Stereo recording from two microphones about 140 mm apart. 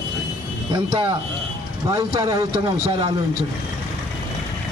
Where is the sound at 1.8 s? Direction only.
25° right (ahead or behind).